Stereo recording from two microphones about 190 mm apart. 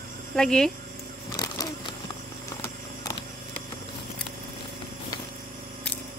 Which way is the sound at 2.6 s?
20° left (ahead or behind).